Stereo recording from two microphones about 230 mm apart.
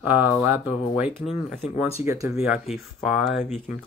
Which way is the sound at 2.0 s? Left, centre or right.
Centre.